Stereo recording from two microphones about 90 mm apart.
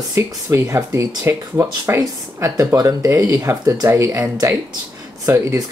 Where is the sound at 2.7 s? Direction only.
50° right (ahead or behind).